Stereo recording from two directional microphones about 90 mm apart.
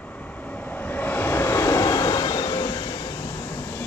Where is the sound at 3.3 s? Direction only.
40° left (ahead or behind).